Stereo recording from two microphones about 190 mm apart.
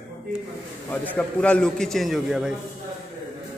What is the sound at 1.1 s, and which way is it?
A man's voice, 5° left (ahead or behind).